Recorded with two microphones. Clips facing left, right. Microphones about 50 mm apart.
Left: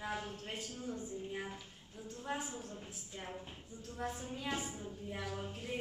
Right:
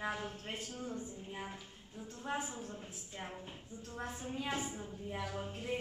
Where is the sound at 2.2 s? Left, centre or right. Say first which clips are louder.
Right 2 dB; centre.